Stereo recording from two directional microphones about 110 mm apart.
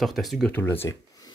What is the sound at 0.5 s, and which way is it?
Speech, 20° left (ahead or behind).